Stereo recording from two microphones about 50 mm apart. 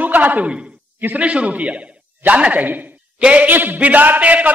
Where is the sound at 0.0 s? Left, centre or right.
Right.